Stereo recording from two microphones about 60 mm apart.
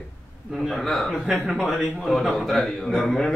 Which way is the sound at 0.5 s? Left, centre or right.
Centre.